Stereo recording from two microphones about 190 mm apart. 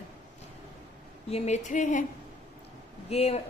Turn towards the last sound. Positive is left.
turn(degrees=35)  # may be behind; listen again after turning